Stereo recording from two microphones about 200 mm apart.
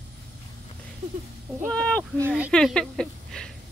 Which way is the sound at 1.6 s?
5° left (ahead or behind).